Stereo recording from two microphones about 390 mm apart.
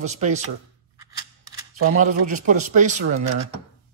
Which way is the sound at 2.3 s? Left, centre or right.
Centre.